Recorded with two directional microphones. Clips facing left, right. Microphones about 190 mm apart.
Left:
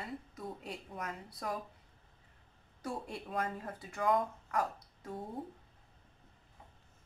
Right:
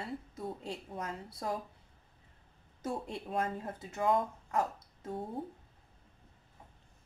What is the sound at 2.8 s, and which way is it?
Speech, 25° right (ahead or behind).